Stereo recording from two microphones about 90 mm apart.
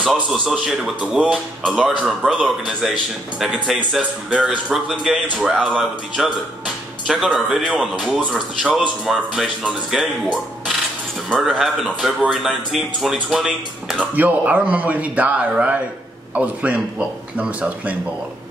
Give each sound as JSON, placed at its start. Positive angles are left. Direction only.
{"t": 0.0, "sound": "speech", "side_deg": 0}
{"t": 14.1, "sound": "speech", "side_deg": -15}